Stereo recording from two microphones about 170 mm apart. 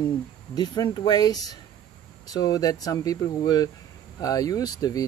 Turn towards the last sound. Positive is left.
turn(degrees=20)  # may be behind; listen again after turning